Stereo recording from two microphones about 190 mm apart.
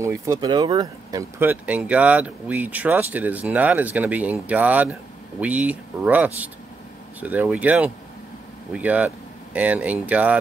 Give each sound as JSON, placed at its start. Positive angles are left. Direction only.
{"t": 0.0, "sound": "speech", "side_deg": -15}
{"t": 1.4, "sound": "speech", "side_deg": -10}